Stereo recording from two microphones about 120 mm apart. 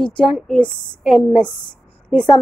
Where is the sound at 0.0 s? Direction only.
5° left (ahead or behind).